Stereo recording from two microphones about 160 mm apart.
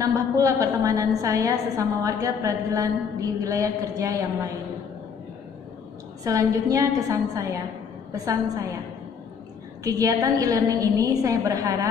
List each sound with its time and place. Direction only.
0.0 s a woman's voice: 20° right (ahead or behind)
6.2 s a woman's voice: 20° right (ahead or behind)
9.8 s a woman's voice: 20° right (ahead or behind)